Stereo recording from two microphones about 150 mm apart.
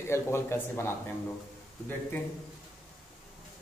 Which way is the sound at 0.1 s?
15° left (ahead or behind).